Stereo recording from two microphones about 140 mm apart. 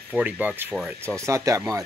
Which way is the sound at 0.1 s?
10° right (ahead or behind).